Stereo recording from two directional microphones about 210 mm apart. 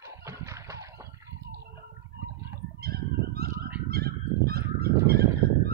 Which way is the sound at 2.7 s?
45° right (ahead or behind).